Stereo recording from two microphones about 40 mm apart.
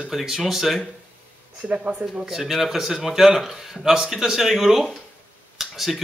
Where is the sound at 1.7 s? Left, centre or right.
Right.